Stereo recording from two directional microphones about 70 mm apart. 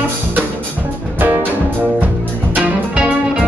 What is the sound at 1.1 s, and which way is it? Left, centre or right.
Music, right.